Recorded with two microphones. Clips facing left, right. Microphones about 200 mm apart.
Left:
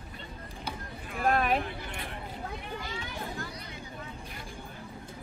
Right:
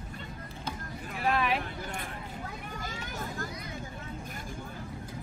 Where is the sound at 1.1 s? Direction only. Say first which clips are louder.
Left 2 dB; 50° left (ahead or behind).